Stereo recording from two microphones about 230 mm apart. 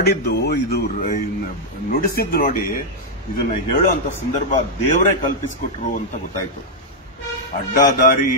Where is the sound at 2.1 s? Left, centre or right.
Left.